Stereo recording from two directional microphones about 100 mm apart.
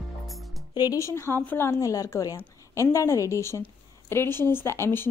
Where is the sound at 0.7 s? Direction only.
35° left (ahead or behind).